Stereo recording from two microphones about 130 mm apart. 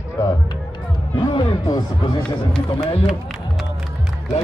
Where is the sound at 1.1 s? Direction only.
40° left (ahead or behind).